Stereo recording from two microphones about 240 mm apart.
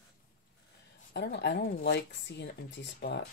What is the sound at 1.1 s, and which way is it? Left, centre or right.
Speech, left.